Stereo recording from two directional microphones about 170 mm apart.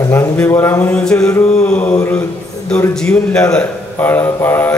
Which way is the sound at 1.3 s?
10° left (ahead or behind).